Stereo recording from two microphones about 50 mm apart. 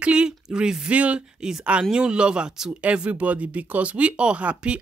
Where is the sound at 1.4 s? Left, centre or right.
Centre.